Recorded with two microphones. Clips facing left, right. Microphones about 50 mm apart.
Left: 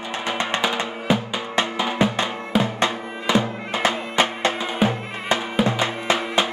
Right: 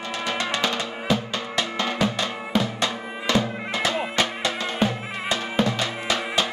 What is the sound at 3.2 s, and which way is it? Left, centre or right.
Music, left.